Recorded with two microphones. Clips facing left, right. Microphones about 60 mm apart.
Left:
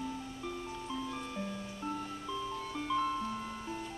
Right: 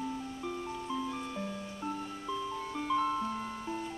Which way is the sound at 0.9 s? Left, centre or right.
Centre.